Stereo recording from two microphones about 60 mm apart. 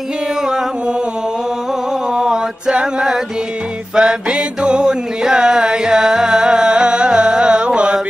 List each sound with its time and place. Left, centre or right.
2.1 s mantra: centre
3.9 s music: centre